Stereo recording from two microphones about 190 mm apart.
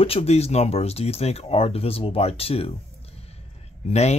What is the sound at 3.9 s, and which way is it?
Speech, 35° left (ahead or behind).